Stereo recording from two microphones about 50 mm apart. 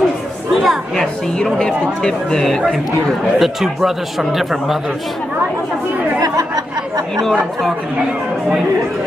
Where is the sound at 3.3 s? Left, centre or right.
Centre.